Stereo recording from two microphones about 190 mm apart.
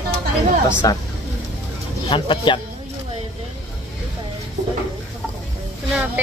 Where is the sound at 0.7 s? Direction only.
15° left (ahead or behind).